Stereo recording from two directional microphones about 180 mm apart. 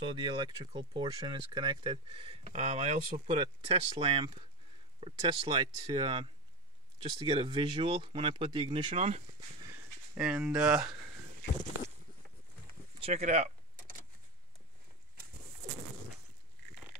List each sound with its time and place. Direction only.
0.0 s speech: 25° right (ahead or behind)
9.7 s a sound: 5° right (ahead or behind)
13.0 s vehicle: 40° right (ahead or behind)